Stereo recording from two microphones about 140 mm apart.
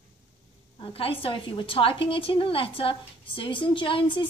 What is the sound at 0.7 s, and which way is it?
A woman's voice, 40° left (ahead or behind).